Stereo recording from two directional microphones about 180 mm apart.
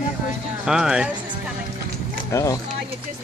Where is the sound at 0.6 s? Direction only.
5° right (ahead or behind).